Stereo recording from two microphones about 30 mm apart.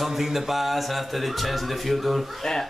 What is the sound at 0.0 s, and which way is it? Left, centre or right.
A man's voice, centre.